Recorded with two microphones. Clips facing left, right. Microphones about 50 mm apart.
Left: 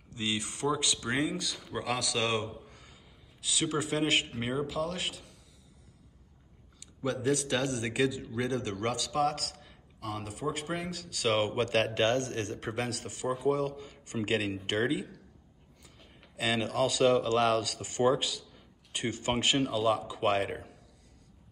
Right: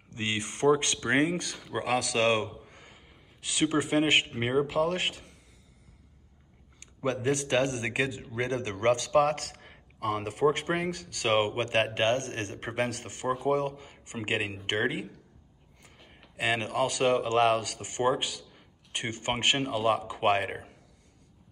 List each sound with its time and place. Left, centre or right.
0.1 s a man's voice: right
6.8 s a man's voice: right
11.1 s a man's voice: right
13.7 s a man's voice: right